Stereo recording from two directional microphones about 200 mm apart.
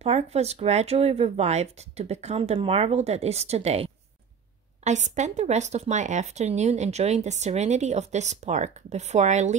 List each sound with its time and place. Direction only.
0.0 s speech: 30° right (ahead or behind)